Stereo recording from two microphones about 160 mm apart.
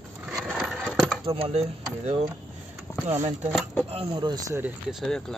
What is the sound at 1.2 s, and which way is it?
Speech, 35° right (ahead or behind).